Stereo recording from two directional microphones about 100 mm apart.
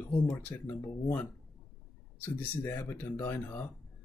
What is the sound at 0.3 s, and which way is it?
Speech, 20° left (ahead or behind).